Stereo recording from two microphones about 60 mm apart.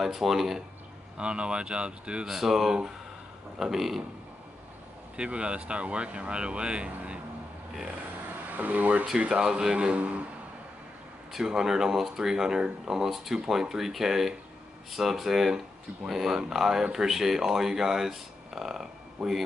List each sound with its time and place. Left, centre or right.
0.0 s speech: centre
1.1 s speech: centre
2.2 s speech: centre
5.1 s speech: centre
8.5 s speech: right
9.3 s speech: centre
11.3 s speech: centre